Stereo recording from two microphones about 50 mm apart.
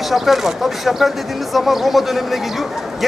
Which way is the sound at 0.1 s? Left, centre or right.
Centre.